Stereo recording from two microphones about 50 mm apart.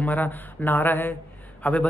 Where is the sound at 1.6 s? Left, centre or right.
Left.